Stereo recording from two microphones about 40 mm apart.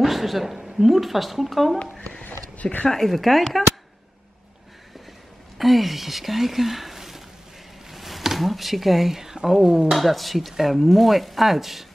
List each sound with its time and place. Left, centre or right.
0.0 s speech: centre
1.8 s speech: left
2.2 s a sound: left
2.9 s speech: centre
5.6 s speech: centre
7.9 s a sound: centre
9.6 s speech: centre
9.8 s speech: centre